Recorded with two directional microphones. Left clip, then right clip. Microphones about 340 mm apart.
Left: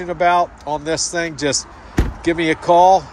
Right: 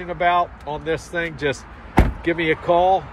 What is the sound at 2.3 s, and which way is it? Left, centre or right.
Speech, centre.